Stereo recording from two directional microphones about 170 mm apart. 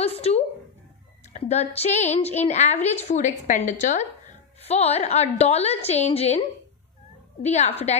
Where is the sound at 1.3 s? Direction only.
40° left (ahead or behind).